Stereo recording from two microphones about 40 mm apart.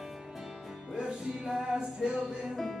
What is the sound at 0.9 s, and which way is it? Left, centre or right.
Music, centre.